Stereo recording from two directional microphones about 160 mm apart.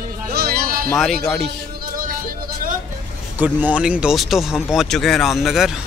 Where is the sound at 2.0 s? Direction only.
60° right (ahead or behind).